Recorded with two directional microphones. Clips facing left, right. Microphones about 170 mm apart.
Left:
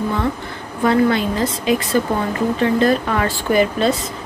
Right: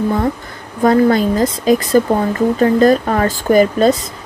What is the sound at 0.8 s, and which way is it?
Speech, 40° right (ahead or behind).